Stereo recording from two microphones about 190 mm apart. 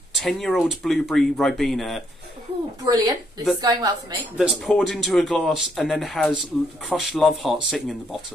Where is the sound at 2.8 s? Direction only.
20° right (ahead or behind).